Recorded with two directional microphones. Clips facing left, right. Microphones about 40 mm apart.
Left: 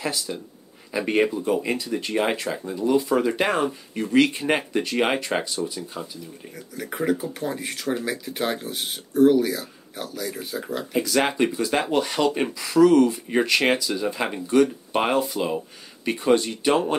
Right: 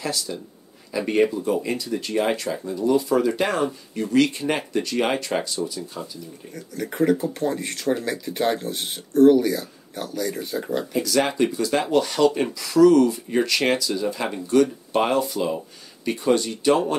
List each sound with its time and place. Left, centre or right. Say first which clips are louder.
0.0 s speech: even; left
6.5 s speech: right 3 dB; centre
10.9 s speech: left 1 dB; left